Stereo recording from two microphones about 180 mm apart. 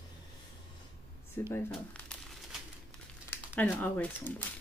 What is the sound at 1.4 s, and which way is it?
Speech, 15° left (ahead or behind).